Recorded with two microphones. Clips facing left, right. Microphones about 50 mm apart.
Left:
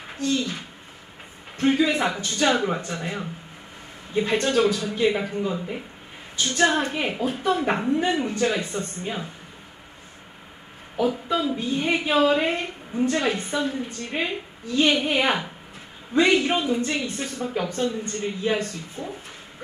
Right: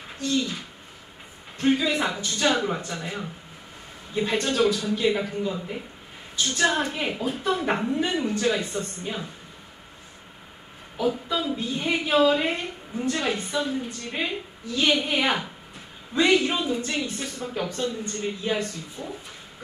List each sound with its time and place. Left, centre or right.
0.2 s a woman's voice: left
11.0 s a woman's voice: left